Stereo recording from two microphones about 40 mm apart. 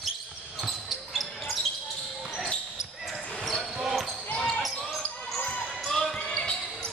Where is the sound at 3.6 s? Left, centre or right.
Centre.